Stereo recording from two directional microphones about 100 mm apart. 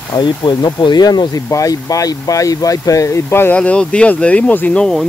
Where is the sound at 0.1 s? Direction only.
45° left (ahead or behind); by 3.5 s 25° left (ahead or behind).